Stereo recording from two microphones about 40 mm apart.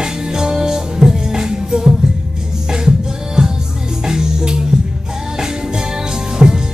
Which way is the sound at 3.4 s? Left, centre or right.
Centre.